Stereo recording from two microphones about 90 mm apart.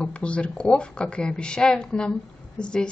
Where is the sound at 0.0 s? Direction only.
10° left (ahead or behind).